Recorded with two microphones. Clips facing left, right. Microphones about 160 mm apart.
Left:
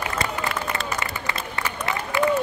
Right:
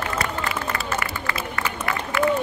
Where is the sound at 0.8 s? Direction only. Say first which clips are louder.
Right 1 dB; 20° left (ahead or behind).